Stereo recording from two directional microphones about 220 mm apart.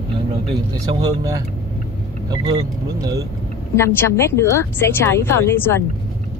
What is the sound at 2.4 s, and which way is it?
Speech, 15° right (ahead or behind).